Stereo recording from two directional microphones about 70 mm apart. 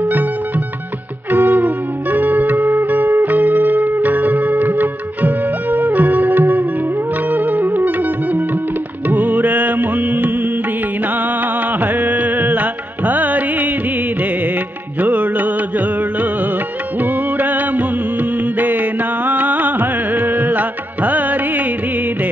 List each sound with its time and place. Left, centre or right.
0.0 s music: right
1.3 s music: right
11.8 s music: right
15.0 s music: right